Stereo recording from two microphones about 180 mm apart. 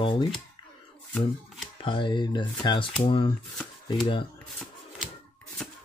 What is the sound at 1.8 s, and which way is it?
Speech, 25° left (ahead or behind).